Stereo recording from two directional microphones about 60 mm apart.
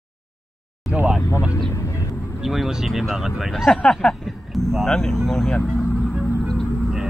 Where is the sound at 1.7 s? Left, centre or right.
Left.